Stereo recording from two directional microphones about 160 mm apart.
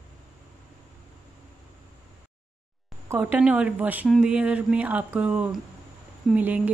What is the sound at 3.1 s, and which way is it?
Speech, 10° right (ahead or behind).